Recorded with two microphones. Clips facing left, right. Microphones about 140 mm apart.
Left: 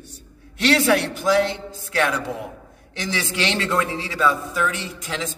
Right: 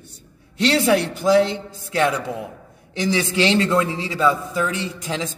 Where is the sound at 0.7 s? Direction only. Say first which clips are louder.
Even; 30° right (ahead or behind).